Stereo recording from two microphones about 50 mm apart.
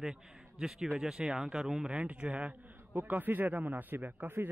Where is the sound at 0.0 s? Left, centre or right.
Centre.